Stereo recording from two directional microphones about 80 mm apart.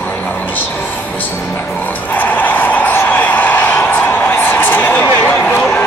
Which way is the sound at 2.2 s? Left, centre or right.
Left.